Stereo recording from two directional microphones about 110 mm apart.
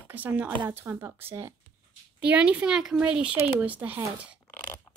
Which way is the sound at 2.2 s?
10° right (ahead or behind).